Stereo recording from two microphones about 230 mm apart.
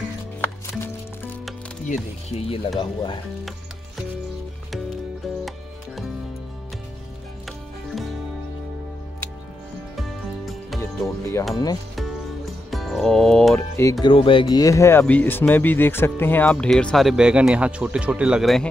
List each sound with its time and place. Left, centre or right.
1.9 s speech: left
9.9 s music: centre
10.8 s music: centre
11.5 s speech: centre
12.7 s speech: centre
14.0 s speech: left; by 18.7 s centre